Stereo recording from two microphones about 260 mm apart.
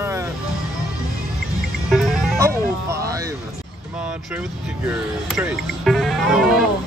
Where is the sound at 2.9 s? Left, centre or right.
Centre.